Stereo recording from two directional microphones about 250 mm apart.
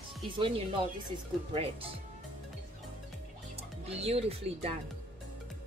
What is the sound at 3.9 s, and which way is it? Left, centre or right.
Speech, right.